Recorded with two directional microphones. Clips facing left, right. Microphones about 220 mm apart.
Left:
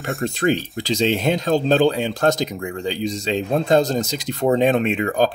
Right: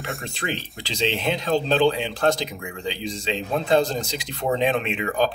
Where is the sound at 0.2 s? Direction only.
45° left (ahead or behind).